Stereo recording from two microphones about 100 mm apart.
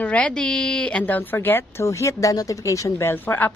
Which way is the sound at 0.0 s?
15° left (ahead or behind).